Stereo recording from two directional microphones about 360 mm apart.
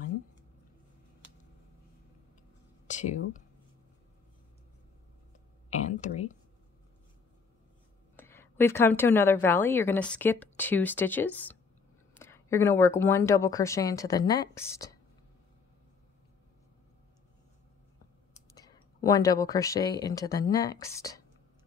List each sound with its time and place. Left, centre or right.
2.9 s speech: centre
5.7 s a sound: centre
8.2 s a woman's voice: centre
18.5 s speech: centre